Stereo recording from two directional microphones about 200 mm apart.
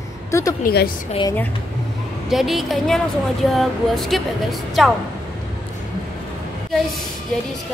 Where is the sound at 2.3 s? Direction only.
Centre (ahead or behind).